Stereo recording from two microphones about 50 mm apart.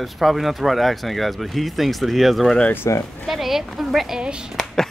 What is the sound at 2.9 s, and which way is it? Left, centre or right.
Speech, left.